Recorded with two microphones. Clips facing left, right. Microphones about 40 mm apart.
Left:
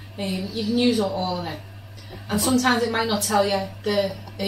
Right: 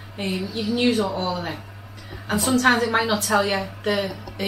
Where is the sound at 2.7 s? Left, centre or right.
Centre.